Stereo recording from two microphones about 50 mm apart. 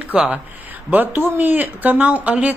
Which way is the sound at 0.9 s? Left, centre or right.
Right.